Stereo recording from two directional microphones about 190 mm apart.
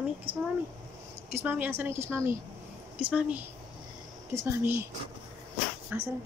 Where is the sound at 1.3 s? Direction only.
10° right (ahead or behind).